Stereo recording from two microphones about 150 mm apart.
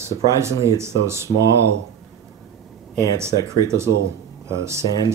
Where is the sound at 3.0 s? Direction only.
20° right (ahead or behind).